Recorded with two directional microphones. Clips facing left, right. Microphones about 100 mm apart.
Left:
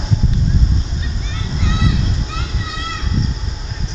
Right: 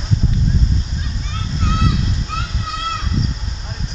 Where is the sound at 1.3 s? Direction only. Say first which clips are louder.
Right 1 dB; 50° right (ahead or behind).